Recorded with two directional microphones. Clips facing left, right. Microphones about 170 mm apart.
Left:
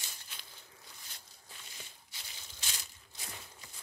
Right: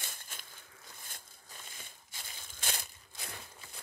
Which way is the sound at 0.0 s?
50° right (ahead or behind).